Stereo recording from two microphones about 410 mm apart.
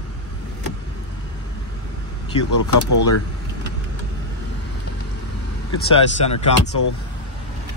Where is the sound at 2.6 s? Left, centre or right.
Left.